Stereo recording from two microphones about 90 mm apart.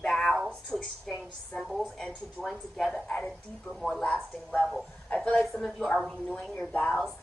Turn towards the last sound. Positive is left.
turn(degrees=15)  # may be behind; listen again after turning